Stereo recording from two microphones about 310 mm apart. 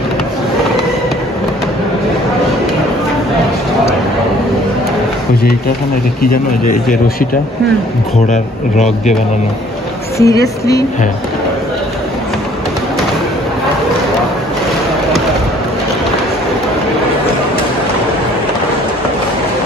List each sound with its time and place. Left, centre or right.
6.6 s speech: left
8.3 s speech: left
10.1 s speech: centre